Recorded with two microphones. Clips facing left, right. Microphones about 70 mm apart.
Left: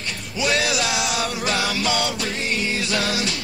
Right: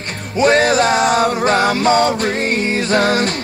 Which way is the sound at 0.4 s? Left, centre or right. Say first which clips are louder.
Right 10 dB; right.